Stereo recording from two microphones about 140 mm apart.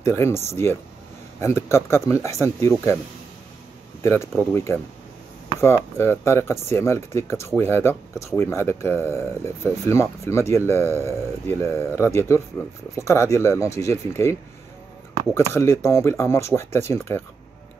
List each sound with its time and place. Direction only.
0.0 s speech: 20° left (ahead or behind)
4.0 s speech: 20° left (ahead or behind)
5.9 s speech: 20° left (ahead or behind)
15.3 s speech: 20° left (ahead or behind)